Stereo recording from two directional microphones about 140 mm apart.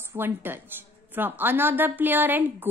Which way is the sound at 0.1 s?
15° right (ahead or behind).